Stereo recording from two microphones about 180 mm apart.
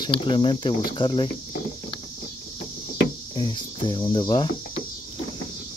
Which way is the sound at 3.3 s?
25° left (ahead or behind).